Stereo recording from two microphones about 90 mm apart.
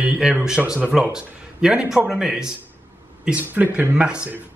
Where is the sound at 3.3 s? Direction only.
15° right (ahead or behind).